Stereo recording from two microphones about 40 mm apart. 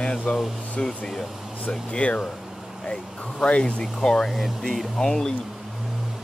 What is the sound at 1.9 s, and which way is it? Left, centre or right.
Speech, left.